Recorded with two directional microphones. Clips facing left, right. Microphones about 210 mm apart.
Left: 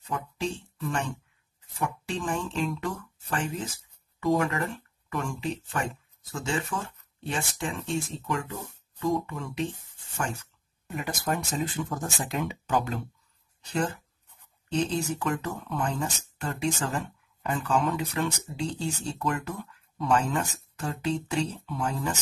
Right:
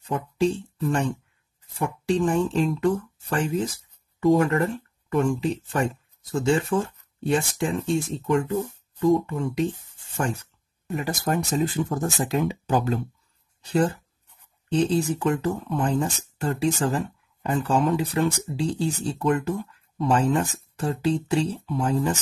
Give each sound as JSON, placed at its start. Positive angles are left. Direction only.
{"t": 0.1, "sound": "speech", "side_deg": -35}